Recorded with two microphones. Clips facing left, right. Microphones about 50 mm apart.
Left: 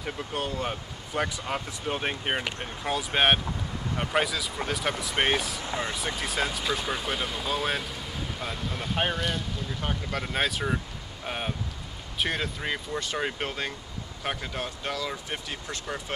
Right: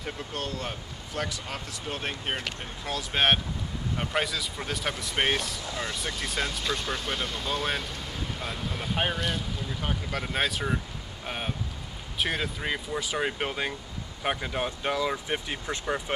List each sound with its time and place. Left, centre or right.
0.0 s speech: centre
5.6 s speech: left
5.9 s speech: centre